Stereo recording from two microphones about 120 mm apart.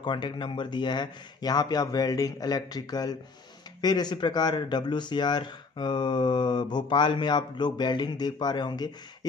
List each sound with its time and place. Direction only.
0.0 s speech: 40° left (ahead or behind)